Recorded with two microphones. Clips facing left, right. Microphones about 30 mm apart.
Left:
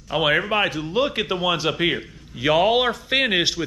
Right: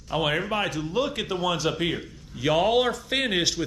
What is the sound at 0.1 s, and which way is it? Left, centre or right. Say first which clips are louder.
Speech: left 5 dB; left.